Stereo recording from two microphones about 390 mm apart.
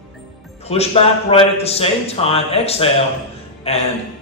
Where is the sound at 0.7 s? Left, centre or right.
Centre.